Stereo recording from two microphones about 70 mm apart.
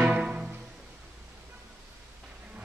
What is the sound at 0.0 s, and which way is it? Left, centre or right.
Music, centre.